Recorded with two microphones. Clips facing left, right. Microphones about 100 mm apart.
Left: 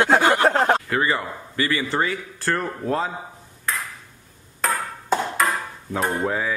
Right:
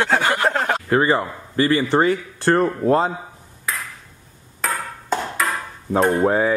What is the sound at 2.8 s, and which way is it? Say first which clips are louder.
Speech: right 5 dB; 40° right (ahead or behind).